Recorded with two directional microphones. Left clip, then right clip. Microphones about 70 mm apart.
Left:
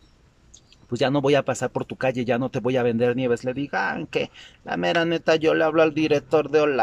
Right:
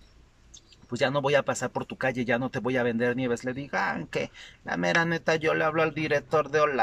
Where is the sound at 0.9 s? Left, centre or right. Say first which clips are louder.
Left 4 dB; left.